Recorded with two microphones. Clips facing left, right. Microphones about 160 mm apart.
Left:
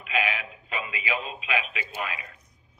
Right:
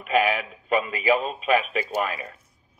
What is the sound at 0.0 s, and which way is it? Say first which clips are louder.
Speech: right 7 dB; 45° right (ahead or behind).